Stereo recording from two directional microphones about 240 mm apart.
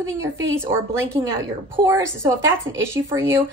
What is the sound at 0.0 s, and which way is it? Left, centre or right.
Speech, centre.